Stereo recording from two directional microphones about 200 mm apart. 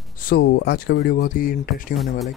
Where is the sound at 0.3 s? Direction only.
55° left (ahead or behind).